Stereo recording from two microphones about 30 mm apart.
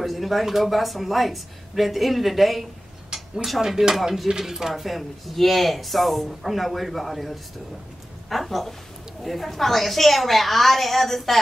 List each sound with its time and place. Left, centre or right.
0.0 s speech: centre
3.1 s mechanisms: centre
3.6 s speech: centre
3.9 s speech: centre
4.8 s speech: centre